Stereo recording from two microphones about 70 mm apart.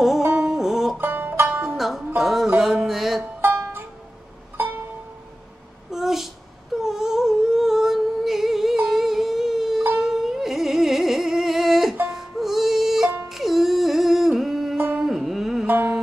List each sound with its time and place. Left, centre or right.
0.4 s music: centre
0.9 s music: right
1.8 s music: centre
3.3 s music: right
5.9 s a sound: centre
6.8 s humming: centre
9.9 s carnatic music: centre
12.1 s music: centre
15.0 s carnatic music: centre
15.6 s music: right